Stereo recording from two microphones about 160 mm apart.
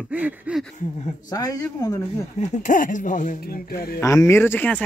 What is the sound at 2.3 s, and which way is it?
Speech, 45° left (ahead or behind).